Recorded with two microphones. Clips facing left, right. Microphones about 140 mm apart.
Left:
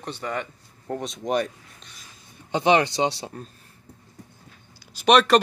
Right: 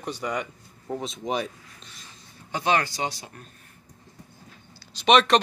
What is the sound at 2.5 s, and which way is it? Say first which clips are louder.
Speech: left 5 dB; 20° left (ahead or behind).